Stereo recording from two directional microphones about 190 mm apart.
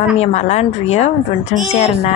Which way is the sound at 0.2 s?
35° left (ahead or behind).